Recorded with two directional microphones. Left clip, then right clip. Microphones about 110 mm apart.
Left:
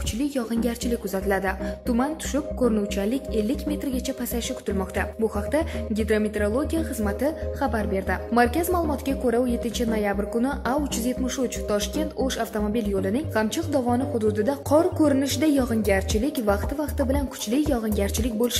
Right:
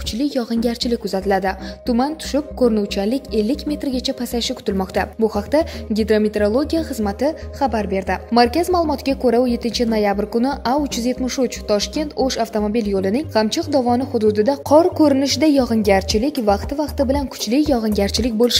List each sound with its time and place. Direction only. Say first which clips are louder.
0.2 s a woman's voice: right 6 dB; 40° right (ahead or behind)
4.6 s a woman's voice: right 6 dB; 60° right (ahead or behind); by 17.8 s 45° right (ahead or behind)
17.8 s speech: right 7 dB; 65° right (ahead or behind)